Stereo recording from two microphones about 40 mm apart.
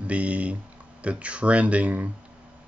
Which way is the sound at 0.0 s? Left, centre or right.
Right.